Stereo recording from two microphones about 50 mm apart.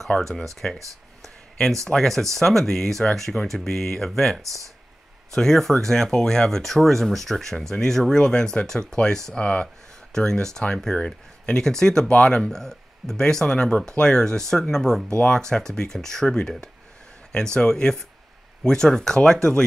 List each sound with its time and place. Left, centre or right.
0.0 s speech: centre
1.2 s a sound: centre
1.9 s speech: centre